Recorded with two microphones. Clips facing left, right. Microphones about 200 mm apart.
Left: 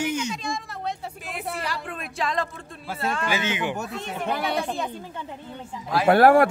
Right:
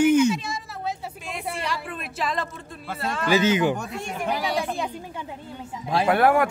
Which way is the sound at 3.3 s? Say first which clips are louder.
Right 7 dB; 40° right (ahead or behind).